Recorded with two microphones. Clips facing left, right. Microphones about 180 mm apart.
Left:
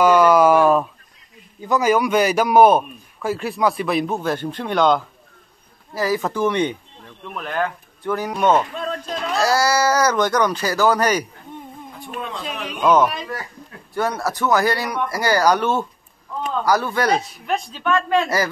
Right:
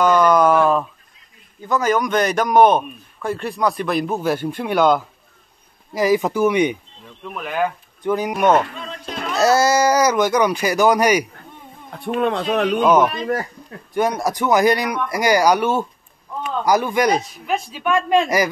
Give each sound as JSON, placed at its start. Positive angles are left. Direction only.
{"t": 0.0, "sound": "a sound", "side_deg": 10}
{"t": 1.7, "sound": "a man's voice", "side_deg": 10}
{"t": 9.4, "sound": "speech", "side_deg": -25}
{"t": 11.9, "sound": "a man's voice", "side_deg": -65}
{"t": 12.8, "sound": "speech", "side_deg": -10}
{"t": 13.2, "sound": "speech", "side_deg": -45}
{"t": 13.9, "sound": "speech", "side_deg": -15}